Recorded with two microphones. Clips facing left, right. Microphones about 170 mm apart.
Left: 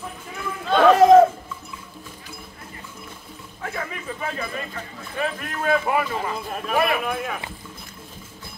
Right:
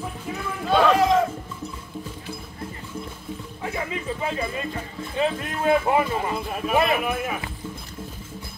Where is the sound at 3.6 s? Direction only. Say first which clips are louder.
Right 1 dB; 15° right (ahead or behind).